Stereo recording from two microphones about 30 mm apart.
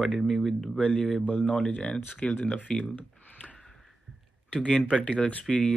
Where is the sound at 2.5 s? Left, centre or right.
Left.